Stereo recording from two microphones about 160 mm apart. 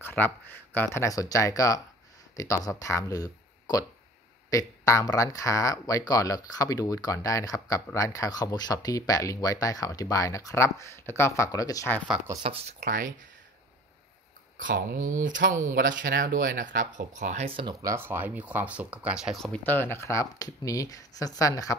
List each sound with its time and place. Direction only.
0.0 s a sound: 10° left (ahead or behind)
0.9 s speech: 20° left (ahead or behind)
12.4 s speech: 40° right (ahead or behind)
12.8 s speech: 55° right (ahead or behind)
14.6 s speech: 75° right (ahead or behind)
15.0 s speech: 55° right (ahead or behind)
17.5 s speech: 35° right (ahead or behind)
17.8 s speech: 15° right (ahead or behind); by 21.7 s 20° left (ahead or behind)